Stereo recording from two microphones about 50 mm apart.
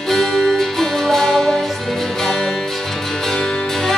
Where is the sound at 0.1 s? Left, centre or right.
Centre.